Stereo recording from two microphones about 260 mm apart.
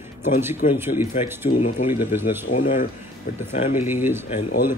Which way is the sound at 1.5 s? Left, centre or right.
Left.